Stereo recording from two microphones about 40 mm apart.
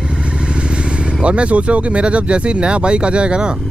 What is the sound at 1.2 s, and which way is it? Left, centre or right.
Speech, right.